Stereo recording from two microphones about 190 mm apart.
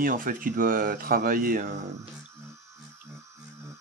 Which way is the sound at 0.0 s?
45° right (ahead or behind).